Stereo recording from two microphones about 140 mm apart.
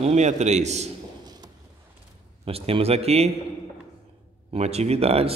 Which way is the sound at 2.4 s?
45° right (ahead or behind).